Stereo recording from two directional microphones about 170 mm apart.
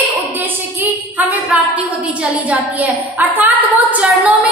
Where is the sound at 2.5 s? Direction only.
10° right (ahead or behind).